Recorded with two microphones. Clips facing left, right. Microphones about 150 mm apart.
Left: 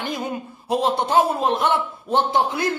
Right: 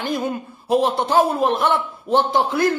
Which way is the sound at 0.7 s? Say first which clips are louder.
Right 3 dB; 20° left (ahead or behind).